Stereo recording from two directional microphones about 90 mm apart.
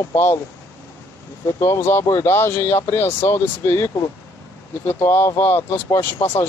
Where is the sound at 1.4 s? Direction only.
30° left (ahead or behind).